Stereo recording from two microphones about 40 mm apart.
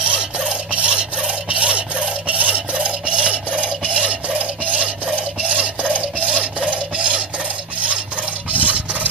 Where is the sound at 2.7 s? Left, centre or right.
Right.